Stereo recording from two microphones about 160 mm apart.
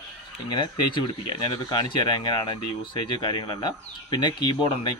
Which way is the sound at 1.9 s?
30° left (ahead or behind).